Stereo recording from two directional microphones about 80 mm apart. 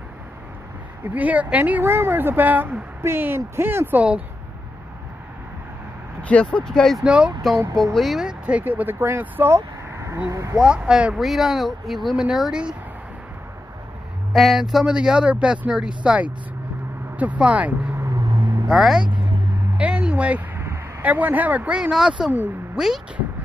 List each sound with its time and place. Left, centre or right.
1.0 s speech: centre
1.8 s speech: right
6.2 s speech: centre
7.0 s speech: centre
7.7 s speech: centre; by 10.6 s right
10.6 s speech: centre
14.3 s speech: centre
18.2 s vehicle: right
18.7 s speech: centre
19.8 s a sound: centre
20.5 s a sound: right
21.0 s speech: centre
22.2 s speech: centre